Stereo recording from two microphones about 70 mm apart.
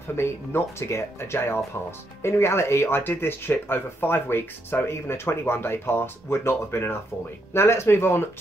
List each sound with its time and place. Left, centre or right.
0.1 s speech: left